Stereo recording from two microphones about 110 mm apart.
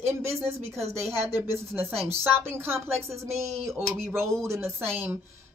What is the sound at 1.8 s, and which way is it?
Speech, 65° right (ahead or behind).